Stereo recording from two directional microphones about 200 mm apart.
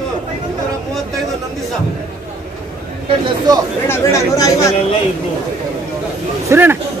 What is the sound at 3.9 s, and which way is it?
Speech, 15° left (ahead or behind).